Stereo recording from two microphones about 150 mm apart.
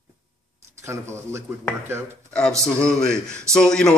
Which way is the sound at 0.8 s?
20° right (ahead or behind).